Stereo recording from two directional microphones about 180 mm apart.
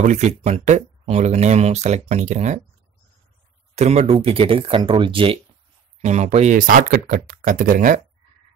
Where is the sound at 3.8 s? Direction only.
35° right (ahead or behind).